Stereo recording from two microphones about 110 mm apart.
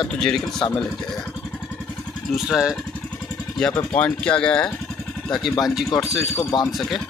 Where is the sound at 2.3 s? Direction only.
5° right (ahead or behind).